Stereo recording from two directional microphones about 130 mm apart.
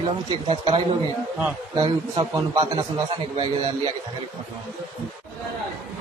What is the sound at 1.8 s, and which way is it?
Speech, 30° right (ahead or behind).